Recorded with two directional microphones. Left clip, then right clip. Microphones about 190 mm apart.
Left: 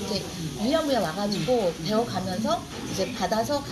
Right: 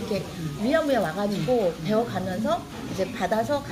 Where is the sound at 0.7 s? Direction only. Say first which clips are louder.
Right 2 dB; 15° right (ahead or behind).